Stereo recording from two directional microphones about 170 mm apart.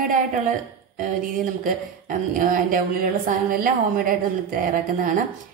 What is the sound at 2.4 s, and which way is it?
A woman's voice, 50° right (ahead or behind).